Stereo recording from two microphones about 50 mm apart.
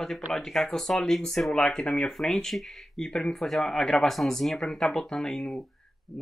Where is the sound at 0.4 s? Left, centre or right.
Centre.